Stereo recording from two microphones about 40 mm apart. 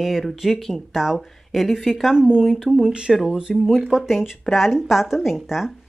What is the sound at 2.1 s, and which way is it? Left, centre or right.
Speech, centre.